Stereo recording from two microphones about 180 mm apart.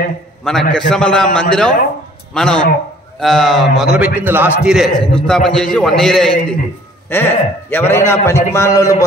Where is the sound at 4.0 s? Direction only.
10° right (ahead or behind).